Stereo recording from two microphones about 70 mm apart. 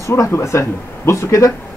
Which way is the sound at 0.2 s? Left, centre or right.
Left.